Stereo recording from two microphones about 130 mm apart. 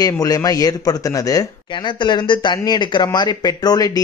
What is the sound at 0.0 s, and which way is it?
Speech, 25° left (ahead or behind).